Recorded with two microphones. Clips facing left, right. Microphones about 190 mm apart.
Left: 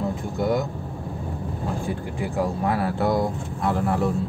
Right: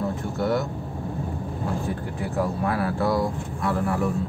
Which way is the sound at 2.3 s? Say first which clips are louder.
Left 1 dB; 20° left (ahead or behind).